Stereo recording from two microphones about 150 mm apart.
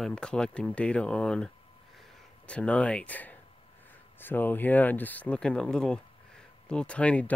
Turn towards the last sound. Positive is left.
turn(degrees=10)  # may be behind; listen again after turning